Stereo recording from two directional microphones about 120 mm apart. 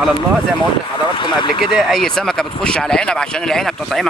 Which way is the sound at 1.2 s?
40° left (ahead or behind).